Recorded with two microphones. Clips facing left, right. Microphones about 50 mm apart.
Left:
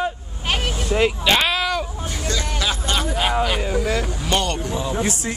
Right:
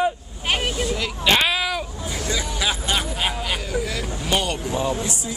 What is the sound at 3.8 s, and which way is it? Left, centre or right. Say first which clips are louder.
Speech: left 4 dB; centre.